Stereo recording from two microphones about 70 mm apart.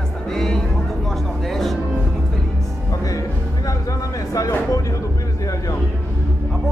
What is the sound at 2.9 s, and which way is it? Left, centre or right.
Music, left.